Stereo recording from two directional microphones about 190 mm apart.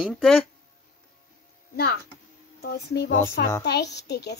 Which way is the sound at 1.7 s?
55° left (ahead or behind).